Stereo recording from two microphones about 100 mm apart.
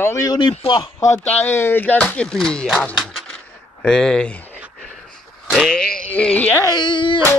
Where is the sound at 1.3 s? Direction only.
20° left (ahead or behind); by 2.8 s centre (ahead or behind).